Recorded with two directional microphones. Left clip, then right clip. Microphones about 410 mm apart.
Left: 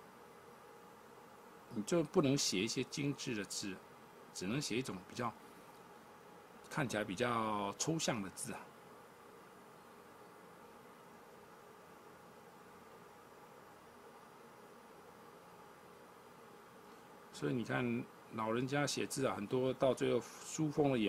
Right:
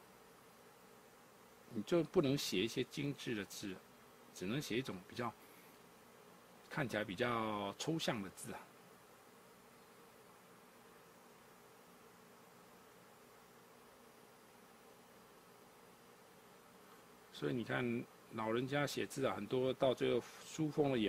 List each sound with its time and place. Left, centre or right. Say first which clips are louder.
1.9 s speech: left 1 dB; right
6.7 s speech: left 2 dB; right
17.3 s speech: left 1 dB; right